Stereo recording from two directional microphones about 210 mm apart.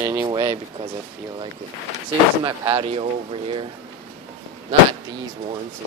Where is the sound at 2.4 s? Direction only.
25° right (ahead or behind).